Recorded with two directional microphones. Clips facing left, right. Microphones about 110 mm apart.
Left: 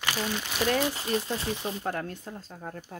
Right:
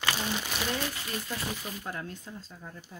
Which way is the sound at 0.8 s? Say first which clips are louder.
Left 7 dB; 25° left (ahead or behind).